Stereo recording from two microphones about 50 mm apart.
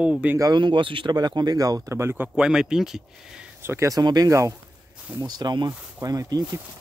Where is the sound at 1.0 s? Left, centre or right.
Right.